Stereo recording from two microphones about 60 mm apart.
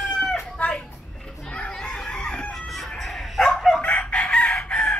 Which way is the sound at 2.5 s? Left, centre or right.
Centre.